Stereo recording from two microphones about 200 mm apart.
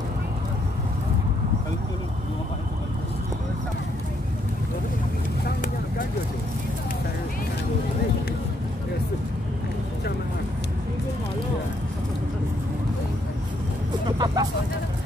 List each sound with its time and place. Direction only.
14.1 s vehicle: 20° right (ahead or behind)